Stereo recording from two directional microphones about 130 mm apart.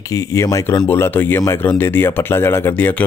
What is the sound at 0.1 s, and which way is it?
Speech, 25° left (ahead or behind).